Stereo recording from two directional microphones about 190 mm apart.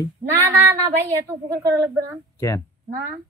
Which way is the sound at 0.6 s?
15° right (ahead or behind).